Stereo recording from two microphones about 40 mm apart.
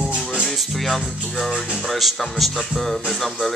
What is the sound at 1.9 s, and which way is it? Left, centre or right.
Speech, centre.